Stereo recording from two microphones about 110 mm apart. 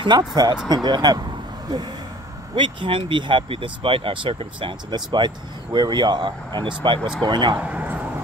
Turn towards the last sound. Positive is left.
turn(degrees=-15)  # may be behind; listen again after turning